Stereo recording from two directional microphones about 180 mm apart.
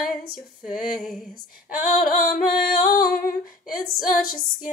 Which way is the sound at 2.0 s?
50° left (ahead or behind).